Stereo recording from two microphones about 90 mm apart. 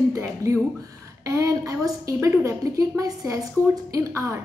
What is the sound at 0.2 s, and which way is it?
A woman's voice, 35° right (ahead or behind).